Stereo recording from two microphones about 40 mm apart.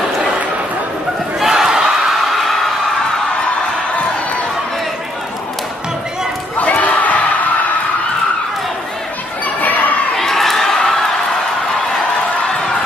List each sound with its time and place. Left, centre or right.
1.4 s battle cry: centre
6.6 s crowd: left
9.6 s chatter: left
10.1 s crowd: centre